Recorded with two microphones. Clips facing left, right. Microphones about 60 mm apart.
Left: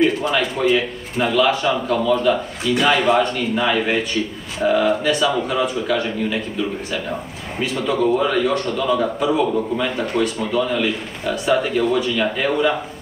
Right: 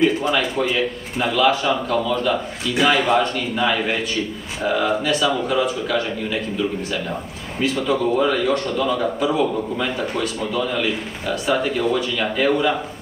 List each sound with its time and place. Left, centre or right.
0.0 s a man's voice: centre
7.8 s a man's voice: centre